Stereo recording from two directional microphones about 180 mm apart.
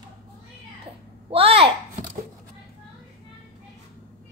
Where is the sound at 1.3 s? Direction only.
30° right (ahead or behind).